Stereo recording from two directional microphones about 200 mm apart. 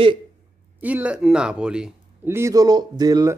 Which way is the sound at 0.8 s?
5° right (ahead or behind).